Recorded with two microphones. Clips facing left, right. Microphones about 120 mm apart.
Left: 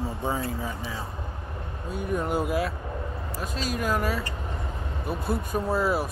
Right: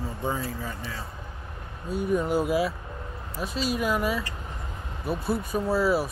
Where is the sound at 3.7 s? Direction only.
10° right (ahead or behind).